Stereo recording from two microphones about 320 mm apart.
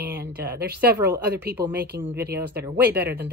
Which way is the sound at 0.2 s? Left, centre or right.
Right.